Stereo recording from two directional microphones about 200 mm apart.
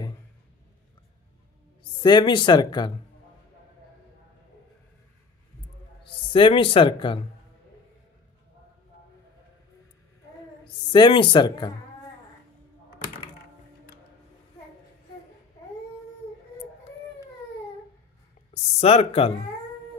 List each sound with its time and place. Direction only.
1.8 s speech: 20° left (ahead or behind)
6.3 s speech: 25° left (ahead or behind)
10.9 s speech: 25° left (ahead or behind)
18.8 s speech: 30° left (ahead or behind)